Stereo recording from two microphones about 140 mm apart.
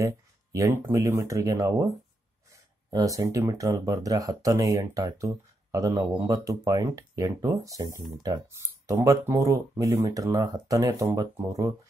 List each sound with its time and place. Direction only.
0.0 s speech: 20° right (ahead or behind)